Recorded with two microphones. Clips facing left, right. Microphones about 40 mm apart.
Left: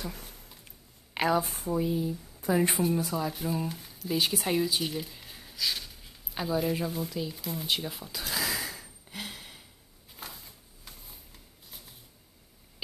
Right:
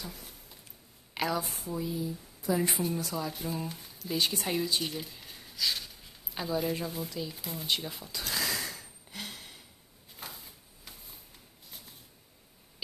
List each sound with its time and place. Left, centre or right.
1.1 s speech: left
2.8 s speech: centre
7.4 s a sound: centre